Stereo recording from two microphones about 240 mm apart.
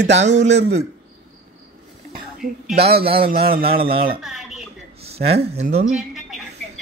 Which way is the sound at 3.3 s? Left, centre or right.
Right.